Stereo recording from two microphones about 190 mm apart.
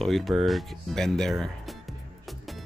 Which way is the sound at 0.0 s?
Centre (ahead or behind).